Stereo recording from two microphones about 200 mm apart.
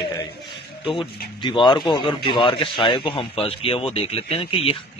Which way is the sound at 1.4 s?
25° left (ahead or behind).